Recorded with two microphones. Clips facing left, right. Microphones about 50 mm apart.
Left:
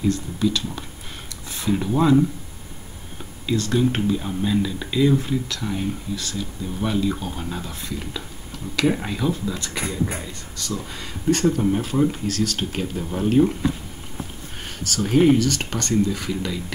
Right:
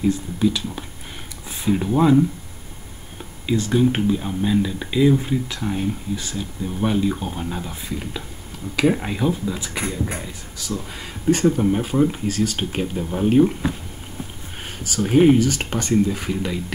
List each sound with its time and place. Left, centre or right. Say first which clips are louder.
0.0 s speech: right 2 dB; centre
3.4 s speech: right 2 dB; centre
15.0 s speech: right 2 dB; centre